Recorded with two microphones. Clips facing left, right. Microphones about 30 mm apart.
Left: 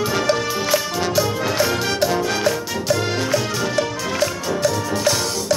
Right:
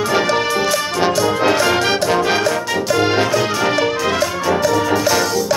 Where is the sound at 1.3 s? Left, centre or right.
Right.